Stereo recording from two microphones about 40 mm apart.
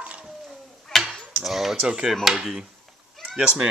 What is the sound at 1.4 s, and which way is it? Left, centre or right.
Speech, centre.